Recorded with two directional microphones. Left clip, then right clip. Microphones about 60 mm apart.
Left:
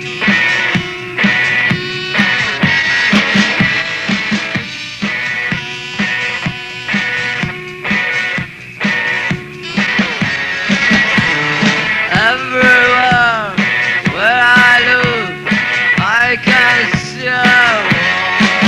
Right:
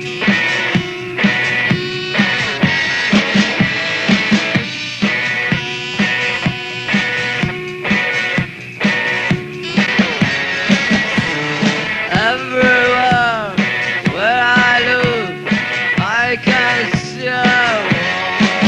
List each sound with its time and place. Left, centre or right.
0.2 s music: right